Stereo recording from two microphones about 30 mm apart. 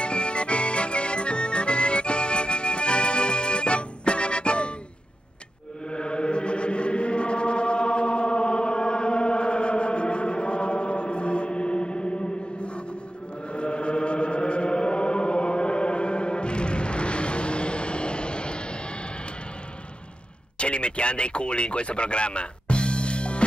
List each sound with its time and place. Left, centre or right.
0.0 s accordion: left
5.9 s chant: left
12.5 s music: left
13.5 s chant: left
20.5 s radio: left